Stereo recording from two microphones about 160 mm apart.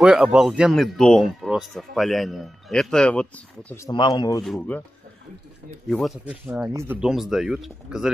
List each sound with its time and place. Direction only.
0.0 s speech: 5° right (ahead or behind); by 3.8 s 10° left (ahead or behind)
3.8 s speech: 30° left (ahead or behind)
4.4 s speech: 5° left (ahead or behind)
5.9 s speech: 5° left (ahead or behind)
6.7 s speech: 20° right (ahead or behind)
7.0 s speech: centre (ahead or behind)